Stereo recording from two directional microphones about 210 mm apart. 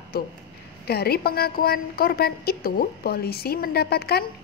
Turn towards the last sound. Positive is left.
turn(degrees=50)  # may be behind; listen again after turning